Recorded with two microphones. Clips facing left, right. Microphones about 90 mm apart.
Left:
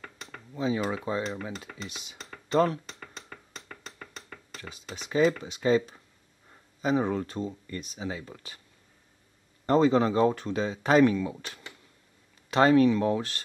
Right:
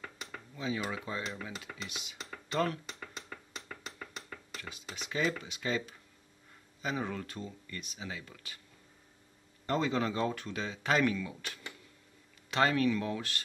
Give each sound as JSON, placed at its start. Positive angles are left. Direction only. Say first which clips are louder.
{"t": 0.0, "sound": "a sound", "louder": "even", "side_deg": 0}
{"t": 0.6, "sound": "speech", "louder": "left 7 dB", "side_deg": 35}
{"t": 2.9, "sound": "music", "louder": "even", "side_deg": 0}
{"t": 4.9, "sound": "speech", "louder": "left 9 dB", "side_deg": 35}
{"t": 9.7, "sound": "speech", "louder": "left 9 dB", "side_deg": 35}